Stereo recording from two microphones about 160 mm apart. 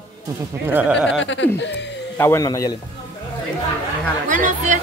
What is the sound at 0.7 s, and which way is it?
Speech, 10° right (ahead or behind).